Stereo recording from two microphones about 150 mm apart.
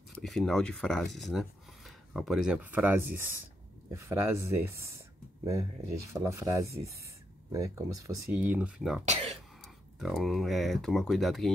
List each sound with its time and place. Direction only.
0.1 s speech: centre (ahead or behind); by 8.2 s 20° right (ahead or behind)
8.3 s speech: 10° right (ahead or behind)
9.0 s speech: 45° right (ahead or behind)
9.9 s speech: 5° right (ahead or behind)